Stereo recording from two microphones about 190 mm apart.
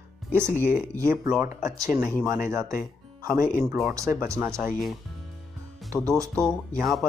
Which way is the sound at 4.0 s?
15° right (ahead or behind).